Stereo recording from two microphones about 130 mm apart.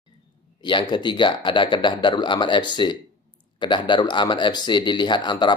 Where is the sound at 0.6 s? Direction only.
35° left (ahead or behind).